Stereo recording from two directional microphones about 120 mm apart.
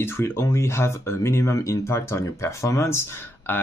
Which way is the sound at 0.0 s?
20° left (ahead or behind).